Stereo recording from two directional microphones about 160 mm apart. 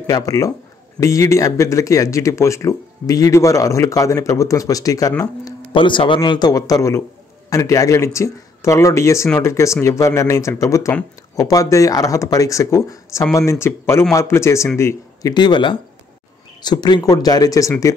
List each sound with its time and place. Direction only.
0.0 s a man's voice: 20° left (ahead or behind)